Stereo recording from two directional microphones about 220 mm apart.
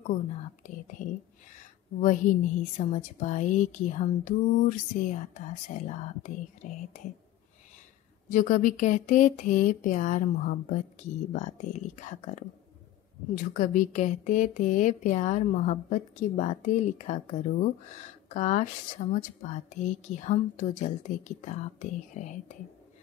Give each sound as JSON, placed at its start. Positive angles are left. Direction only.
{"t": 0.7, "sound": "a woman's voice", "side_deg": 35}
{"t": 8.3, "sound": "a woman's voice", "side_deg": 35}